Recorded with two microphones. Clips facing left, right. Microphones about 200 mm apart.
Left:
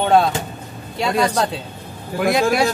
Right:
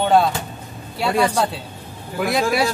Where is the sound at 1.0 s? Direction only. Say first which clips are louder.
Even; 5° right (ahead or behind).